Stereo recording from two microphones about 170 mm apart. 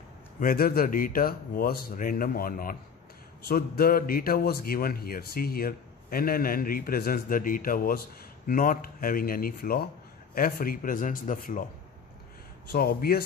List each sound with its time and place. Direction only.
0.4 s a man's voice: 60° left (ahead or behind)
12.6 s a man's voice: 60° left (ahead or behind)